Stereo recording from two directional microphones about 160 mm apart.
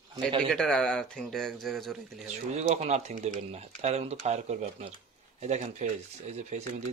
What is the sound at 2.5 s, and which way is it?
Speech, 40° right (ahead or behind).